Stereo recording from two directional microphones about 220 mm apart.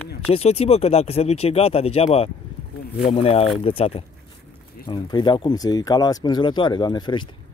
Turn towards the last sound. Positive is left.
turn(degrees=20)  # may be behind; listen again after turning